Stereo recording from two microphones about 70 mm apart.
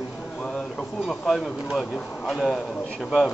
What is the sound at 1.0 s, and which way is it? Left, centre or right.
Speech, centre.